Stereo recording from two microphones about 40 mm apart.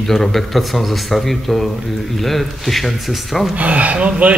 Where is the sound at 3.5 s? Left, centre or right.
Right.